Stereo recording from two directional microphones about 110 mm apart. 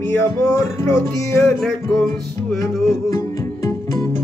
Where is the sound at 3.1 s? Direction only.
30° left (ahead or behind).